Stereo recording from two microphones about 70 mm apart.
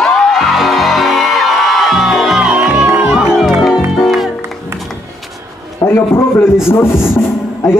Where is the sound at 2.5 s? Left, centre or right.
Right.